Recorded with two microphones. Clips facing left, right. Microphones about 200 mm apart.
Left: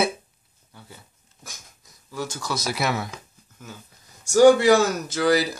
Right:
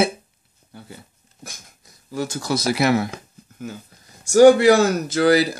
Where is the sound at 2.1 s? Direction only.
60° right (ahead or behind).